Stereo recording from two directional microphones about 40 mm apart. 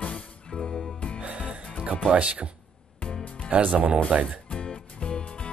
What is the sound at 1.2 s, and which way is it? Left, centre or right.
Music, right.